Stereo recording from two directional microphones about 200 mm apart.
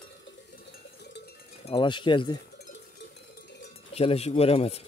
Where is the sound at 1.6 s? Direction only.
25° left (ahead or behind).